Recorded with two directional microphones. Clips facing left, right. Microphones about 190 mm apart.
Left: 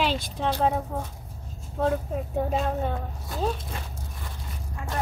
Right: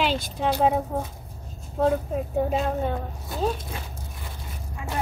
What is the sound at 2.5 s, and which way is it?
Speech, centre (ahead or behind).